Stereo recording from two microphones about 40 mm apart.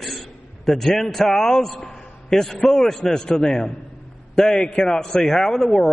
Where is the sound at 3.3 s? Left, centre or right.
Left.